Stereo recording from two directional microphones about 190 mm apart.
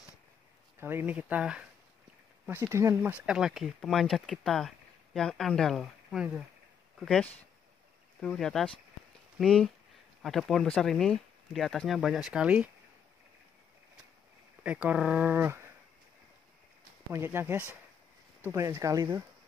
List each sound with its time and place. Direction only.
0.7 s speech: 10° right (ahead or behind)
14.6 s speech: 5° right (ahead or behind)
17.1 s speech: 10° right (ahead or behind)